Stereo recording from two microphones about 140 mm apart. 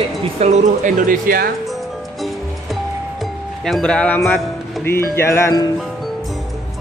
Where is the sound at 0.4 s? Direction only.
60° right (ahead or behind); by 1.5 s 85° right.